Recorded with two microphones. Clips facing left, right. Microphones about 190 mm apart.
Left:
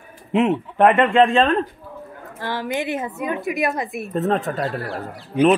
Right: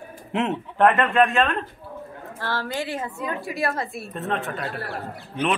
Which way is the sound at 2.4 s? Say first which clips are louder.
Left 4 dB; 15° left (ahead or behind).